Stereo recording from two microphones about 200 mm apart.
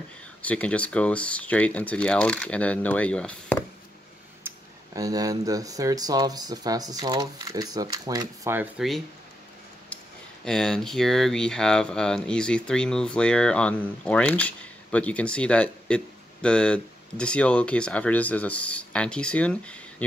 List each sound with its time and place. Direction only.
0.4 s speech: 5° left (ahead or behind)
4.5 s speech: 15° right (ahead or behind)
10.4 s speech: 5° left (ahead or behind)